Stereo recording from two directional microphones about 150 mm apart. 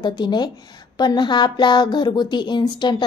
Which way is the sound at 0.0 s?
30° left (ahead or behind).